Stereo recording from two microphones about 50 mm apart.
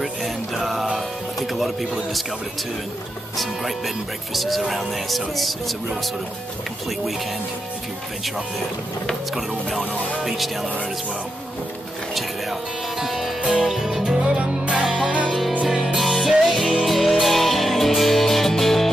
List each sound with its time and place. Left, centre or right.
0.0 s music: centre
1.5 s speech: centre
3.3 s speech: centre
9.3 s speech: centre
13.0 s music: centre
15.6 s music: centre